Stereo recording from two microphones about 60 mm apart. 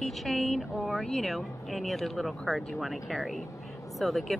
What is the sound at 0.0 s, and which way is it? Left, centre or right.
Speech, centre.